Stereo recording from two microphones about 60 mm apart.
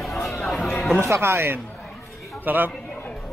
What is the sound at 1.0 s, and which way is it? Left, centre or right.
Speech, right.